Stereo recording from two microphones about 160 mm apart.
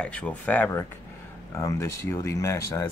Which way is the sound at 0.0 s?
5° left (ahead or behind).